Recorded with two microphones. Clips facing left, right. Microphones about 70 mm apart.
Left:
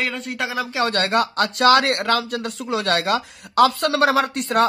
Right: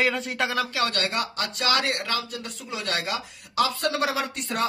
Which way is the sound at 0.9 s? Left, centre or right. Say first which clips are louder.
Left 8 dB; left.